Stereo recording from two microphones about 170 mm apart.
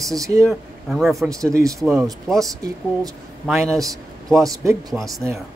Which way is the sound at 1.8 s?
Centre (ahead or behind).